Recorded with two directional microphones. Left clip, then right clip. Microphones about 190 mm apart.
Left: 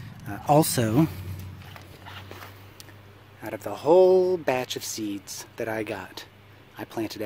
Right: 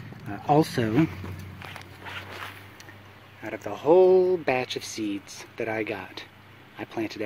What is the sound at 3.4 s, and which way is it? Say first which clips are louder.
Speech: even; 10° left (ahead or behind).